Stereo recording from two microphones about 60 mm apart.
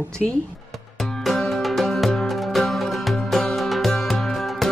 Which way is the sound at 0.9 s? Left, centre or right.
Centre.